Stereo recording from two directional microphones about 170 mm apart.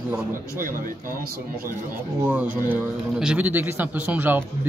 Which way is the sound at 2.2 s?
10° right (ahead or behind).